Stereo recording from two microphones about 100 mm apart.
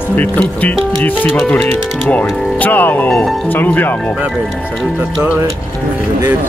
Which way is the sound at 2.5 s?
15° left (ahead or behind).